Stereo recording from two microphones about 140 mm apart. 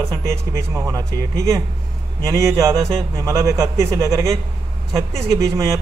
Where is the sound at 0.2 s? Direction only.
20° right (ahead or behind).